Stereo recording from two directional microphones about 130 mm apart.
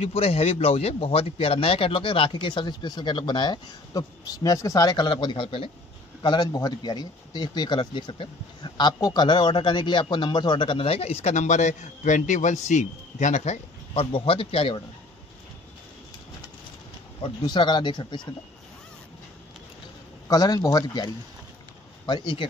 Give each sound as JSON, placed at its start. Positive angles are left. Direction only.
{"t": 0.0, "sound": "speech", "side_deg": 50}
{"t": 17.2, "sound": "speech", "side_deg": 40}
{"t": 20.2, "sound": "speech", "side_deg": 30}